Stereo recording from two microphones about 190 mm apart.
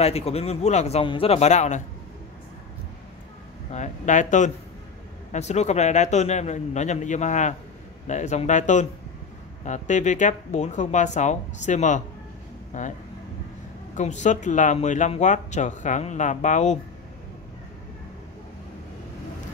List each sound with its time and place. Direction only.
0.0 s speech: 35° left (ahead or behind)
3.7 s speech: 40° left (ahead or behind)
13.9 s speech: 40° left (ahead or behind)